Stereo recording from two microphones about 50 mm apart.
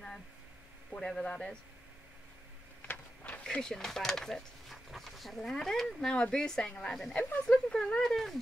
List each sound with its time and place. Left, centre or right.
0.9 s a man's voice: centre
2.8 s a sound: left
3.4 s speech: centre